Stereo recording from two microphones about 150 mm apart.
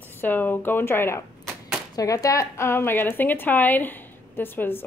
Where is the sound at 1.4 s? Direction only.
5° left (ahead or behind).